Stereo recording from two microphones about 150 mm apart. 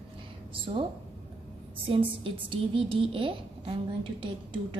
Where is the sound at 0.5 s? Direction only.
35° right (ahead or behind).